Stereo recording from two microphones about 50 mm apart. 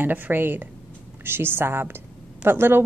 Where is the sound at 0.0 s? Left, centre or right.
Right.